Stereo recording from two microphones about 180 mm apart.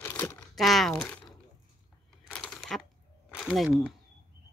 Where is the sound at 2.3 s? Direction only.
5° left (ahead or behind).